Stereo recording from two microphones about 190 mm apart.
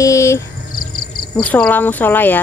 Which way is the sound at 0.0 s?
15° left (ahead or behind).